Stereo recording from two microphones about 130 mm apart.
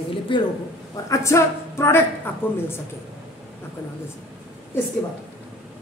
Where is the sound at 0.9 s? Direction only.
25° left (ahead or behind).